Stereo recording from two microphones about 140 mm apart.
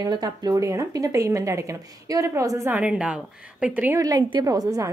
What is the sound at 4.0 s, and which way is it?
Speech, 25° right (ahead or behind).